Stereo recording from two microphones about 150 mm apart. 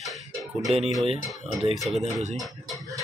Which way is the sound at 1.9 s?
5° right (ahead or behind).